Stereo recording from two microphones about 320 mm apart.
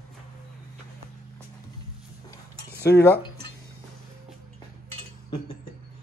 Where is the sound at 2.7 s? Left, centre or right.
Left.